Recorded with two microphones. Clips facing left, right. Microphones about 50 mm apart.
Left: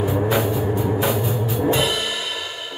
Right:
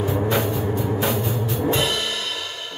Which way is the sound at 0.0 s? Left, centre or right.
Centre.